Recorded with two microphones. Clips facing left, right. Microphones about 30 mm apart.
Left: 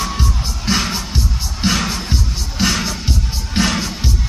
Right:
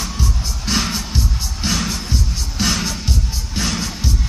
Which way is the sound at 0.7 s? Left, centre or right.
Centre.